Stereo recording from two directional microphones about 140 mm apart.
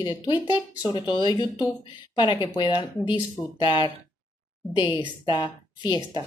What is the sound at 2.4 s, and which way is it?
A woman's voice, 35° left (ahead or behind).